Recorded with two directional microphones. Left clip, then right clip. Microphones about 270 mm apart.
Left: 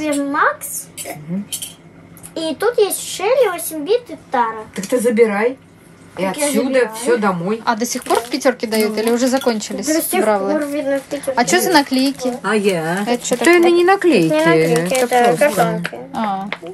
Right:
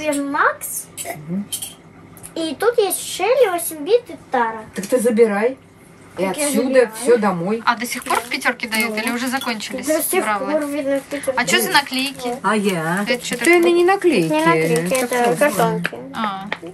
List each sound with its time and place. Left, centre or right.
0.0 s speech: centre
2.3 s speech: centre
7.6 s speech: centre
10.6 s speech: centre
11.3 s speech: left
12.4 s speech: centre
13.0 s speech: centre
13.7 s speech: left
14.3 s speech: centre
16.1 s speech: centre